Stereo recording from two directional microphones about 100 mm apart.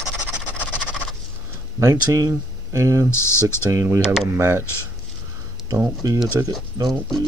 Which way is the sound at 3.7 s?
30° right (ahead or behind).